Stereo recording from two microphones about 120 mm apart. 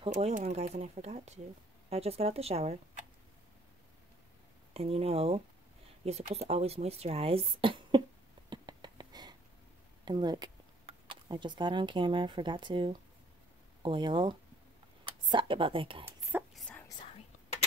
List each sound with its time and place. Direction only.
0.0 s speech: 45° right (ahead or behind)
0.3 s speech: 70° right (ahead or behind)
4.7 s speech: 55° right (ahead or behind)
8.5 s a sound: 35° right (ahead or behind)
10.0 s speech: 35° right (ahead or behind)
16.1 s whispering: 20° right (ahead or behind)
16.5 s whispering: 10° left (ahead or behind)